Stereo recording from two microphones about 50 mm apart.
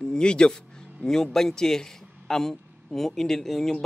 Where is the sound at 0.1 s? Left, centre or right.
Centre.